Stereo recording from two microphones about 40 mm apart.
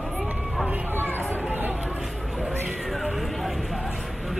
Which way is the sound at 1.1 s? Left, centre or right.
Left.